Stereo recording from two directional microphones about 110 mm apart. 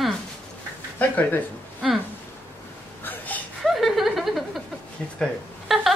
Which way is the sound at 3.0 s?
15° left (ahead or behind).